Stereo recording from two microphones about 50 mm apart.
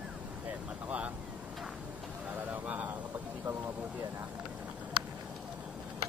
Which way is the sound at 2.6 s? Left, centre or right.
Right.